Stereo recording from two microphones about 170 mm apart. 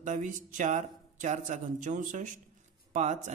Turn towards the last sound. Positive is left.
turn(degrees=-45)  # may be behind; listen again after turning